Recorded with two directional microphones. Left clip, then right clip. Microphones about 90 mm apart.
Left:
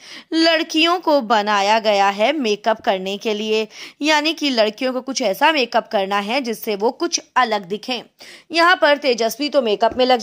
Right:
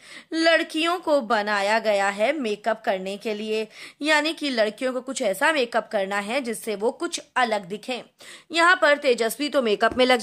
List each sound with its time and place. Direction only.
0.3 s a woman's voice: 40° left (ahead or behind)
8.5 s a woman's voice: 20° left (ahead or behind)
9.4 s speech: centre (ahead or behind)
9.8 s speech: 15° right (ahead or behind)